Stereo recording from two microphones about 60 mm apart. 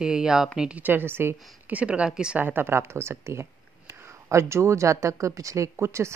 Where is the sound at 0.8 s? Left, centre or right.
Right.